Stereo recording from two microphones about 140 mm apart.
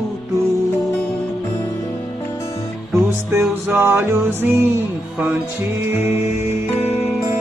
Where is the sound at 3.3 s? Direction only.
15° right (ahead or behind).